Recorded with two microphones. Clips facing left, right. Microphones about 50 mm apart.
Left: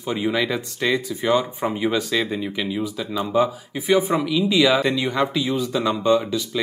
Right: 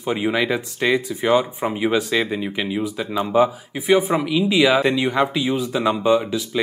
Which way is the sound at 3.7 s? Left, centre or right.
Centre.